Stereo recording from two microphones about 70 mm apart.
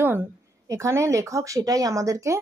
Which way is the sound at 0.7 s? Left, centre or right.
Right.